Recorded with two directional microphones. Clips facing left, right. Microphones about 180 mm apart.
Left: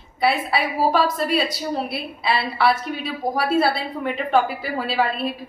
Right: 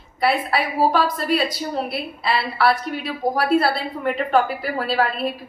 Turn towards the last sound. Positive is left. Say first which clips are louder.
# right 1 dB
turn(degrees=0)  # may be behind; listen again after turning